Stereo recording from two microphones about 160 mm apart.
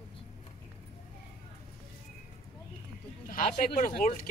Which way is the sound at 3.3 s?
55° left (ahead or behind).